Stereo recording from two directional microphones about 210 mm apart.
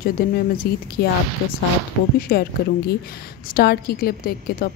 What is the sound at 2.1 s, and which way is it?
Speech, 45° left (ahead or behind).